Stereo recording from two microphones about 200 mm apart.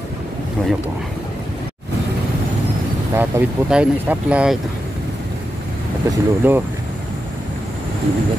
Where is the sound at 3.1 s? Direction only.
10° right (ahead or behind).